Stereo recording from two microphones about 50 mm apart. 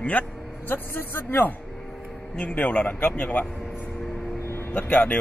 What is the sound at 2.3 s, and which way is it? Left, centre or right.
A man's voice, left.